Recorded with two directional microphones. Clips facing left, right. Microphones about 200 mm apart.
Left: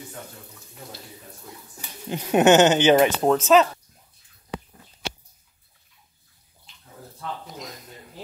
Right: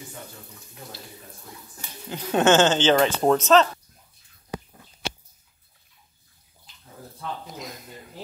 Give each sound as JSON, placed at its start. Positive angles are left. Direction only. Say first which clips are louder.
{"t": 1.8, "sound": "speech", "louder": "left 4 dB", "side_deg": 20}
{"t": 3.2, "sound": "speech", "louder": "left 1 dB", "side_deg": 5}
{"t": 7.2, "sound": "a sound", "louder": "even", "side_deg": 0}